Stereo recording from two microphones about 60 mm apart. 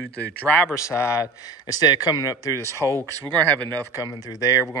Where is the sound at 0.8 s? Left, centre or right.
Left.